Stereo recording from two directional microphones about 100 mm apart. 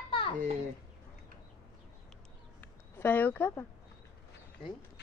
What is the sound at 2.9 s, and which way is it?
Speech, 20° left (ahead or behind).